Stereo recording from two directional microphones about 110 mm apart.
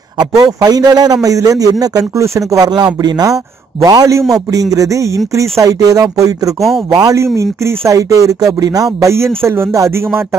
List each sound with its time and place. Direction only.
0.2 s a man's voice: 35° right (ahead or behind)